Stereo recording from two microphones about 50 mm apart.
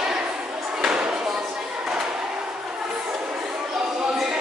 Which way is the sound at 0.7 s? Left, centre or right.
Centre.